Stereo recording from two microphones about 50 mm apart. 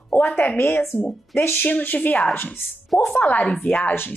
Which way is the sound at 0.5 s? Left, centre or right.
Left.